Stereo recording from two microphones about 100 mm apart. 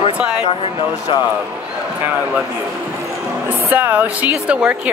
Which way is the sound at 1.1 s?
60° left (ahead or behind).